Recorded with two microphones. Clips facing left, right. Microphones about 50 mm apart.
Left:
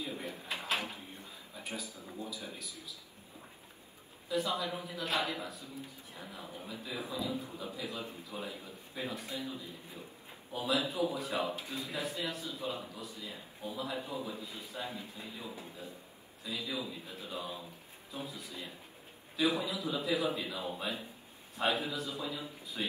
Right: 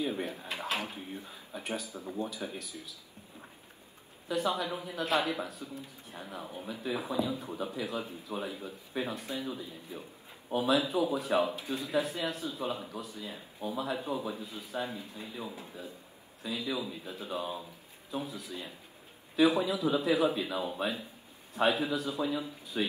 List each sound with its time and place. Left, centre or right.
0.0 s drawer open or close: right
0.8 s a sound: right
2.1 s a man's voice: right
4.3 s a man's voice: right